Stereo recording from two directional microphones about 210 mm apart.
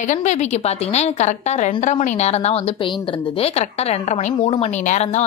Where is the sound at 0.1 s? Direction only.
35° left (ahead or behind).